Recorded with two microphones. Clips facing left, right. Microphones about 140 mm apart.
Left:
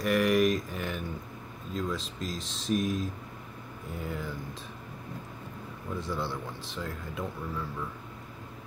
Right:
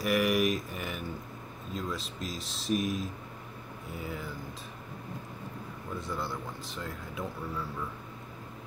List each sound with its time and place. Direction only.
0.0 s speech: 5° right (ahead or behind)
5.9 s speech: centre (ahead or behind)